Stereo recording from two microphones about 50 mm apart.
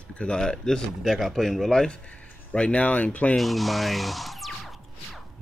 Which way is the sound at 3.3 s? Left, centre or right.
Centre.